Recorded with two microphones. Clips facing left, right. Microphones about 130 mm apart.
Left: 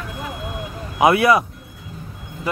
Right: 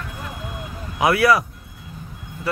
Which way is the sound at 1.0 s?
20° left (ahead or behind).